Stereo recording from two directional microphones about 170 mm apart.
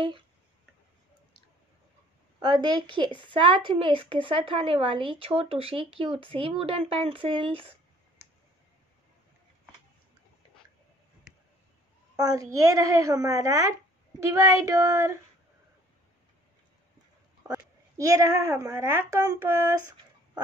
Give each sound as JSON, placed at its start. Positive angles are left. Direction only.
{"t": 2.4, "sound": "a woman's voice", "side_deg": -25}
{"t": 12.2, "sound": "speech", "side_deg": -20}
{"t": 17.5, "sound": "a woman's voice", "side_deg": -20}